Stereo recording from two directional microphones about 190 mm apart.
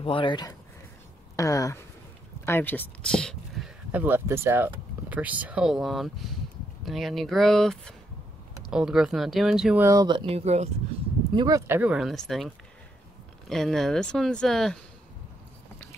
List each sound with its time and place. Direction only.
0.0 s speech: 25° left (ahead or behind); by 9.8 s 5° right (ahead or behind)
9.8 s speech: 20° right (ahead or behind)
11.3 s speech: 20° right (ahead or behind); by 14.8 s 5° left (ahead or behind)